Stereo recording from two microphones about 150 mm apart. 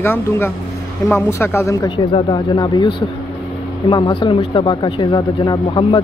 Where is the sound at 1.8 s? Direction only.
30° left (ahead or behind).